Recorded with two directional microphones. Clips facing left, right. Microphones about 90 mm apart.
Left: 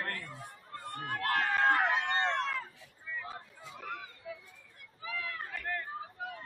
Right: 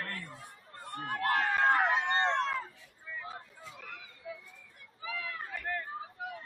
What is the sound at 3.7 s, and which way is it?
Chatter, 45° left (ahead or behind).